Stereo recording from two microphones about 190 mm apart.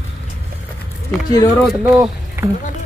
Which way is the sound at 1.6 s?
5° right (ahead or behind).